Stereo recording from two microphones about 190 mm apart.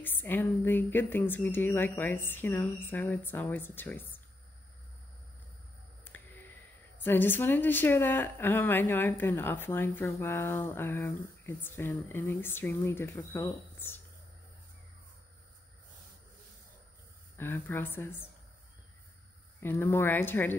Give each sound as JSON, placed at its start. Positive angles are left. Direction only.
{"t": 0.0, "sound": "a woman's voice", "side_deg": 10}
{"t": 6.1, "sound": "a sound", "side_deg": 10}
{"t": 7.0, "sound": "a woman's voice", "side_deg": 10}
{"t": 17.4, "sound": "a woman's voice", "side_deg": 10}
{"t": 19.6, "sound": "a woman's voice", "side_deg": 10}